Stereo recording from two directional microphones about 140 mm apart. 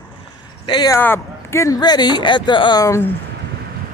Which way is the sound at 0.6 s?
30° left (ahead or behind).